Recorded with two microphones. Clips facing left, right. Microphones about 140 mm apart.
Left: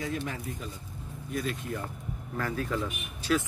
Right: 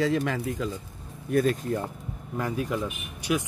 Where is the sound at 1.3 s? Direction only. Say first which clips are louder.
Right 9 dB; 45° right (ahead or behind).